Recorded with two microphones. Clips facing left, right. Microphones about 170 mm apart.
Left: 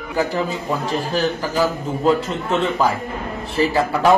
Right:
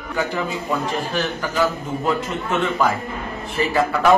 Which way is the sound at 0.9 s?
35° left (ahead or behind).